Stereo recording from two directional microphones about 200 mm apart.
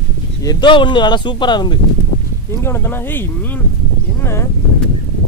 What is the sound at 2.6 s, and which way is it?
Speech, 10° left (ahead or behind).